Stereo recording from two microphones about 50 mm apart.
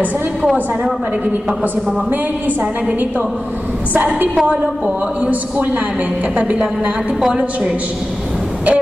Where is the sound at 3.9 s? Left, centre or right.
Right.